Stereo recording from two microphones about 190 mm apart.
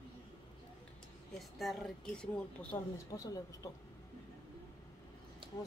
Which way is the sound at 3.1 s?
20° left (ahead or behind).